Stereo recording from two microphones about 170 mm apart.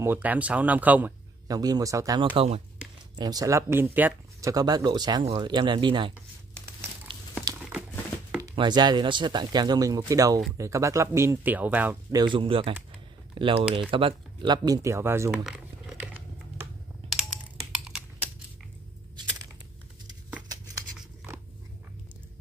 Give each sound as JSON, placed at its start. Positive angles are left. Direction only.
{"t": 0.0, "sound": "speech", "side_deg": -10}
{"t": 1.5, "sound": "speech", "side_deg": -20}
{"t": 3.2, "sound": "speech", "side_deg": -20}
{"t": 7.1, "sound": "crumpling", "side_deg": -30}
{"t": 8.4, "sound": "speech", "side_deg": -25}
{"t": 12.1, "sound": "speech", "side_deg": -25}
{"t": 15.4, "sound": "a sound", "side_deg": -5}